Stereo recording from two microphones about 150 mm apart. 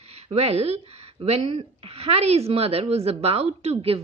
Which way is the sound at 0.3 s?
45° right (ahead or behind).